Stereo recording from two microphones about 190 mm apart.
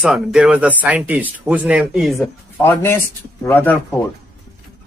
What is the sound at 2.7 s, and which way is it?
Speech, 10° left (ahead or behind).